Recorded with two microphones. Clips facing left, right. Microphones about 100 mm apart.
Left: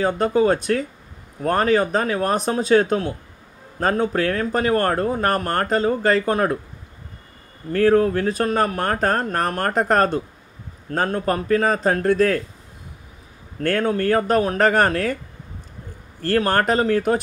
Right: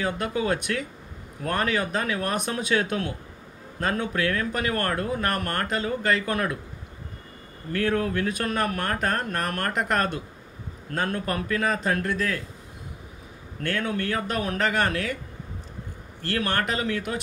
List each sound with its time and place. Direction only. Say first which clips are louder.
0.0 s speech: left 9 dB; 35° left (ahead or behind)
7.7 s speech: left 9 dB; 35° left (ahead or behind)
13.6 s speech: left 7 dB; 45° left (ahead or behind)
16.2 s speech: left 8 dB; 40° left (ahead or behind)